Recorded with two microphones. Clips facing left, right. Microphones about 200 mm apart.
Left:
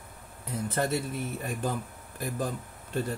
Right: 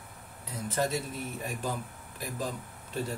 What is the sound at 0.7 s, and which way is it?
Speech, 55° left (ahead or behind).